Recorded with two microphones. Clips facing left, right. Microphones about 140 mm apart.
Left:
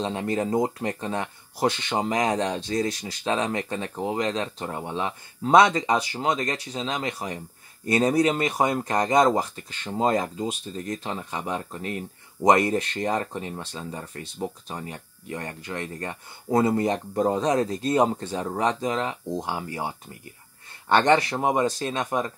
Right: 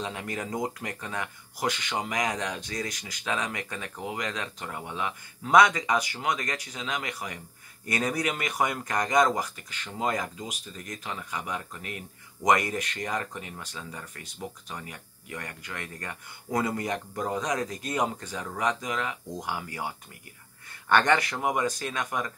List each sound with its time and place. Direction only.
0.0 s speech: 30° left (ahead or behind)
20.9 s speech: 25° left (ahead or behind)